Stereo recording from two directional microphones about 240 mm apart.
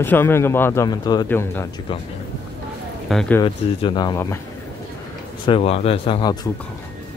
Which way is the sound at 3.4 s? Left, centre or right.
Centre.